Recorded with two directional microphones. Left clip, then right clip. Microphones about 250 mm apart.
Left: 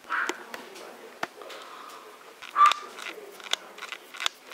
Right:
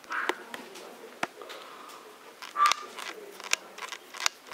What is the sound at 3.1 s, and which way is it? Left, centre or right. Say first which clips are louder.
Biting: even; centre.